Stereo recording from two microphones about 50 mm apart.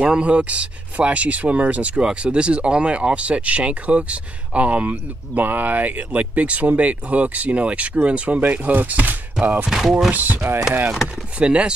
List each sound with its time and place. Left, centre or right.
0.2 s speech: right
9.7 s speech: centre
10.1 s speech: right
11.3 s speech: centre